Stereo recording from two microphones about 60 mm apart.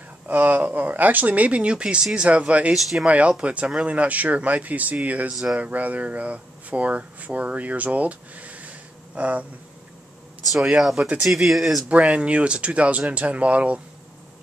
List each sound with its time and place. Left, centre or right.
0.3 s speech: right
2.7 s speech: centre
3.1 s speech: right
5.3 s speech: centre
5.6 s speech: right
10.5 s speech: centre
11.9 s speech: right